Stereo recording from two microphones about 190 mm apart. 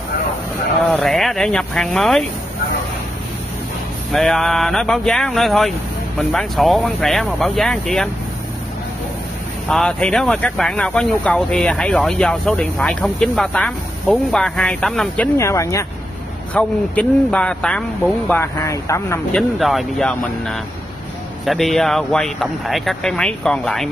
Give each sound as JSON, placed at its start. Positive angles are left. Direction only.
{"t": 0.9, "sound": "speech", "side_deg": 0}
{"t": 4.1, "sound": "speech", "side_deg": 0}
{"t": 9.7, "sound": "speech", "side_deg": 5}
{"t": 15.3, "sound": "a man's voice", "side_deg": 15}
{"t": 19.3, "sound": "speech", "side_deg": 0}